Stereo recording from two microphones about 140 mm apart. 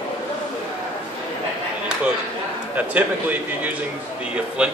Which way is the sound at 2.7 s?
10° right (ahead or behind).